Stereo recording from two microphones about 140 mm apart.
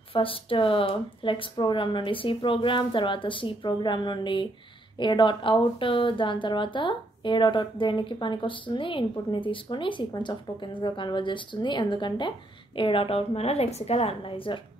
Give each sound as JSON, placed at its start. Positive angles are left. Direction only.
{"t": 0.1, "sound": "a woman's voice", "side_deg": 40}